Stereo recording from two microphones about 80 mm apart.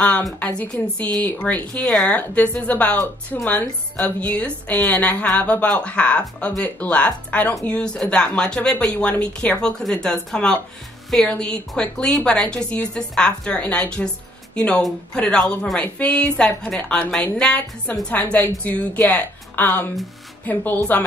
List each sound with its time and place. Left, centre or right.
0.4 s a woman's voice: centre